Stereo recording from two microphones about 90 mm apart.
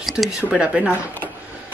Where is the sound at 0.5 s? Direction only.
15° right (ahead or behind).